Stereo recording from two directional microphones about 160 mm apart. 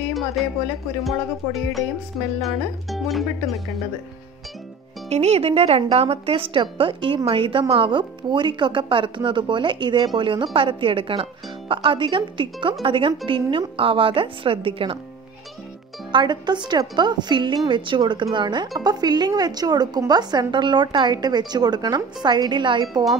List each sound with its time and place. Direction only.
0.4 s speech: centre (ahead or behind)
5.1 s a woman's voice: 40° right (ahead or behind)
16.1 s a woman's voice: 30° right (ahead or behind)